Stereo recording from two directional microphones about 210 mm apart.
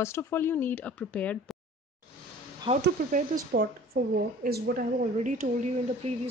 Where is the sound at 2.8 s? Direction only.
45° right (ahead or behind).